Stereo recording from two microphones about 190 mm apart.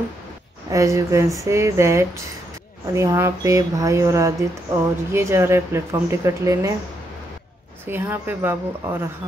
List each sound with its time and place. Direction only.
0.7 s speech: 15° right (ahead or behind)
7.8 s speech: 10° right (ahead or behind)